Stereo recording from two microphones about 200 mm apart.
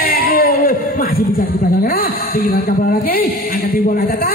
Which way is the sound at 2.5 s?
50° left (ahead or behind).